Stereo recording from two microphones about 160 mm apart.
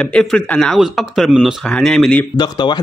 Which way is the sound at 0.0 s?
5° left (ahead or behind).